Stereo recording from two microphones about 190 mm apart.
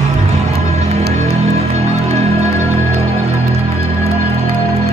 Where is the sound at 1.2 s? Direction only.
35° right (ahead or behind).